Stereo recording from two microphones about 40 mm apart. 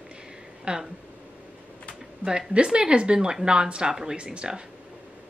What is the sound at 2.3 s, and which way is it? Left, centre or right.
Speech, right.